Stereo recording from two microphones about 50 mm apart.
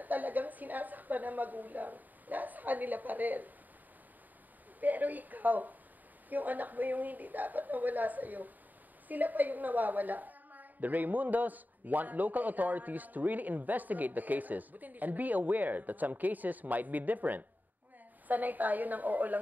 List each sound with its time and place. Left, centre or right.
0.0 s a woman's voice: right
4.7 s a woman's voice: right